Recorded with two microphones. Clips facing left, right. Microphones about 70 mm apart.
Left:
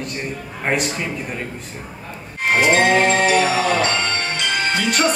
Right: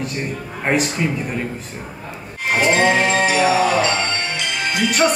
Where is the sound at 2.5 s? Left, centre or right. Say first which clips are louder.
Left 1 dB; left.